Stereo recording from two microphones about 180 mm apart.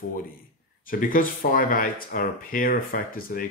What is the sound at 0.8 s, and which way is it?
Speech, 50° left (ahead or behind).